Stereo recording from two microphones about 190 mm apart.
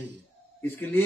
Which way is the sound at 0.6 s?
10° left (ahead or behind).